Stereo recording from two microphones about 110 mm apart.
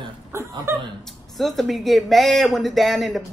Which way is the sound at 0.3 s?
25° right (ahead or behind).